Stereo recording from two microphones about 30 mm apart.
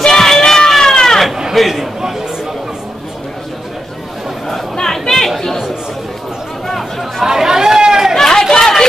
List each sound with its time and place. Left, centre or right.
0.0 s crowd: centre
0.7 s goat: centre
1.0 s sheep: centre
1.6 s a man's voice: centre
5.0 s chatter: centre
6.7 s chatter: centre
7.2 s chatter: centre
8.2 s chatter: centre